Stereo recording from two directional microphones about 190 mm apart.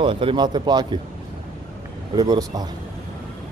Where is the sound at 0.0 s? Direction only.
25° right (ahead or behind).